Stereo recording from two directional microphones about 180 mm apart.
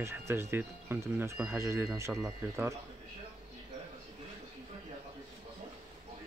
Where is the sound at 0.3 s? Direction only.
15° right (ahead or behind).